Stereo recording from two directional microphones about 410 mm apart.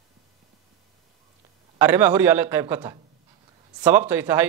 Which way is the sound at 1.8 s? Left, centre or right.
Centre.